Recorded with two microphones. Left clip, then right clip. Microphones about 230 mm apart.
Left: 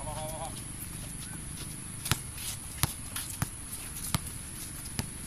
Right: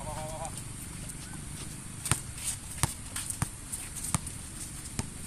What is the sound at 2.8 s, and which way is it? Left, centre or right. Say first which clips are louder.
Clip-clop: even; centre.